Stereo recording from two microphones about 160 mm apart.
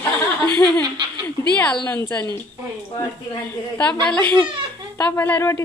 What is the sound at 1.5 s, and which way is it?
Speech, 10° left (ahead or behind).